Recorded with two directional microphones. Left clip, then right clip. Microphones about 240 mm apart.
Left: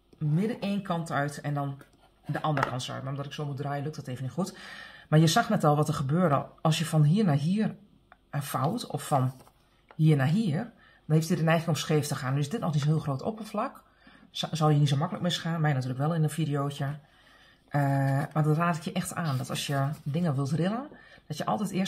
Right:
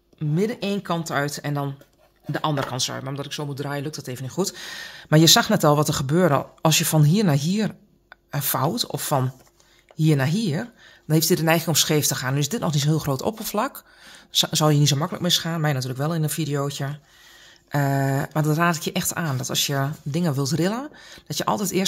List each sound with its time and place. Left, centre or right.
0.4 s speech: right